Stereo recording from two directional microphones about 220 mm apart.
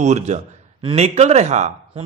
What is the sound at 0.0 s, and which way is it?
Speech, 30° right (ahead or behind).